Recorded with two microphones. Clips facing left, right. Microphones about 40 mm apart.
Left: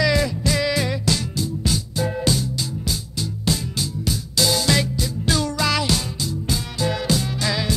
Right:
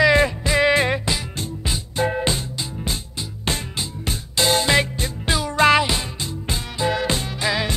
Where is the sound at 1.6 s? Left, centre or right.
Right.